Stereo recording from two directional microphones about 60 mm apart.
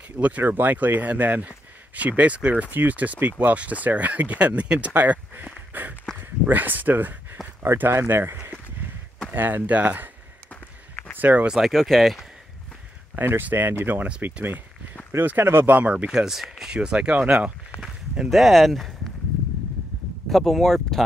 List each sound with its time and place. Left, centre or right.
0.4 s speech: right
11.1 s speech: right
11.5 s speech: centre
13.1 s speech: right
15.1 s speech: right
16.1 s speech: centre
18.3 s speech: centre
20.2 s speech: centre